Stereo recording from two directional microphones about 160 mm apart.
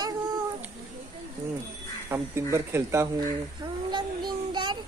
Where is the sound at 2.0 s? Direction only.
15° right (ahead or behind).